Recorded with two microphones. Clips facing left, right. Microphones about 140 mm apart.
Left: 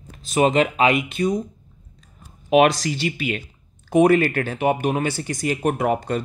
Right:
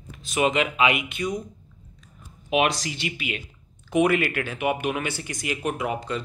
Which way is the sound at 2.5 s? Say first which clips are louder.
Left 7 dB; 40° left (ahead or behind).